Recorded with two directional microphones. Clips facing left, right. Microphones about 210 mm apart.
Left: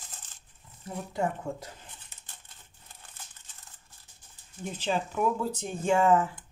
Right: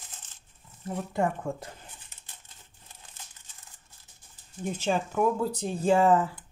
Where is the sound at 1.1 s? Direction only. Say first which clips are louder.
Right 2 dB; 50° right (ahead or behind).